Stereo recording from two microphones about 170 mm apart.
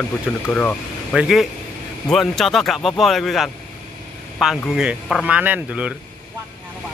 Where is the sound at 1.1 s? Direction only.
5° right (ahead or behind).